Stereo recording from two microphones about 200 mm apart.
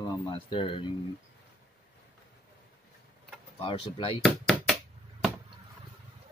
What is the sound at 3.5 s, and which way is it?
Speech, 25° left (ahead or behind).